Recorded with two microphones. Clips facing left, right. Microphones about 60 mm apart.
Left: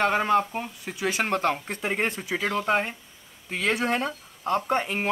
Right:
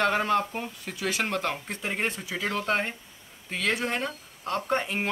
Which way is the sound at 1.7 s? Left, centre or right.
Left.